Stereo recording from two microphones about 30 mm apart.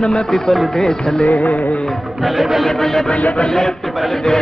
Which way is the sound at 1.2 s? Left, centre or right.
Left.